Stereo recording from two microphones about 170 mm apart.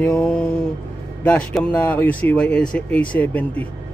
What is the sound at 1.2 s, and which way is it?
Speech, 10° left (ahead or behind).